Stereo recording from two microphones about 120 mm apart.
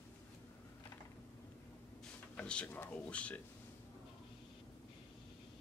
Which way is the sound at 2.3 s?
10° left (ahead or behind).